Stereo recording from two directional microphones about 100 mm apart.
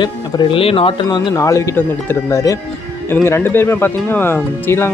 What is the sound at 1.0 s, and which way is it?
Speech, 50° left (ahead or behind).